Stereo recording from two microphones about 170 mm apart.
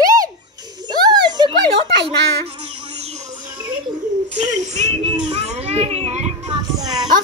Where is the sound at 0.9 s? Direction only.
25° right (ahead or behind).